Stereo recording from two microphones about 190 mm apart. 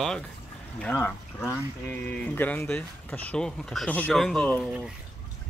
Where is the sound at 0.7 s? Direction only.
10° left (ahead or behind).